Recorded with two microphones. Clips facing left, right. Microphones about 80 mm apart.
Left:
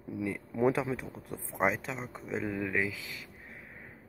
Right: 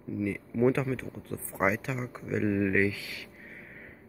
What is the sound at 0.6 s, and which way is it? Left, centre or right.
Speech, centre.